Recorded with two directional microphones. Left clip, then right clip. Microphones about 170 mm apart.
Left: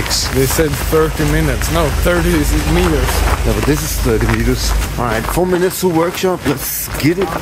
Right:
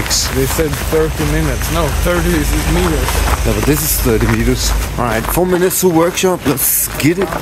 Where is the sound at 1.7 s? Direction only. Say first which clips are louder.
Left 1 dB; 30° left (ahead or behind).